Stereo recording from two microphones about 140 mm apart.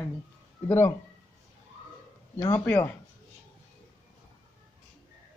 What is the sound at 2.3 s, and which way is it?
Speech, 20° left (ahead or behind).